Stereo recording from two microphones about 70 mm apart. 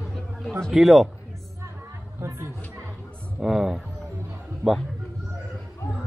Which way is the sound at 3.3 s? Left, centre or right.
Centre.